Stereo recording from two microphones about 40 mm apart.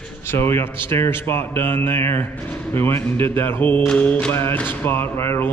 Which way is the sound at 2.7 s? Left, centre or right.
Left.